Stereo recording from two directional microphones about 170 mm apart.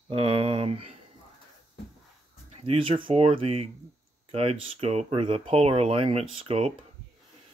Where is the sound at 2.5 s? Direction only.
35° right (ahead or behind).